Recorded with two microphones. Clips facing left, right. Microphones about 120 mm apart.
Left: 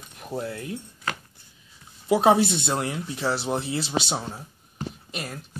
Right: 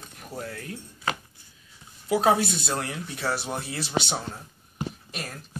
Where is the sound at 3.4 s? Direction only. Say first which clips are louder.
Left 5 dB; 30° left (ahead or behind).